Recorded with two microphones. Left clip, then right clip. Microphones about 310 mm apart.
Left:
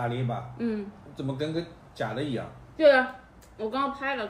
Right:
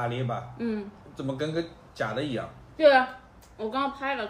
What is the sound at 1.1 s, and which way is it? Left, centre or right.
A man's voice, centre.